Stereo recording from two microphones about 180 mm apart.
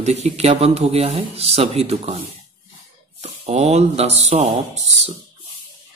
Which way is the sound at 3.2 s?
35° right (ahead or behind).